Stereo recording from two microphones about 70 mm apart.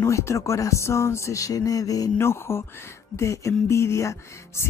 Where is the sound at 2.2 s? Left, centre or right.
Left.